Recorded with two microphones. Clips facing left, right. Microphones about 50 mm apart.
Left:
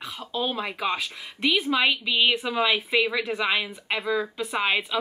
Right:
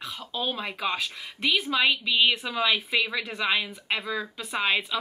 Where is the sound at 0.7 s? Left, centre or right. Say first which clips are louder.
Left 2 dB; centre.